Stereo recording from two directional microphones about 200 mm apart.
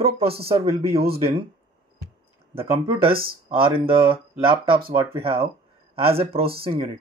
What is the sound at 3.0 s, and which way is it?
Speech, 50° right (ahead or behind).